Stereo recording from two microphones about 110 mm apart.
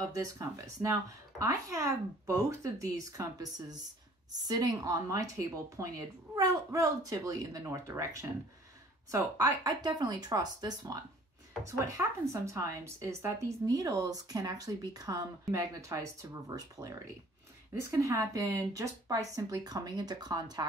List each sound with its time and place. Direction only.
0.1 s a woman's voice: 30° right (ahead or behind)